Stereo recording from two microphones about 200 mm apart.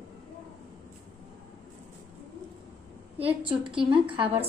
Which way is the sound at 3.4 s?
25° right (ahead or behind).